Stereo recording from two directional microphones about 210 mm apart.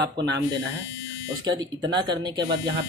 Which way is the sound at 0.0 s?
55° right (ahead or behind).